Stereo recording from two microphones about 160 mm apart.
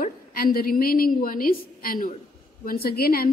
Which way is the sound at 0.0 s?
65° left (ahead or behind).